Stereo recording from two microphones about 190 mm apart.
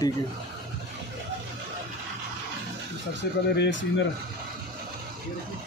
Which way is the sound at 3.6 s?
70° left (ahead or behind).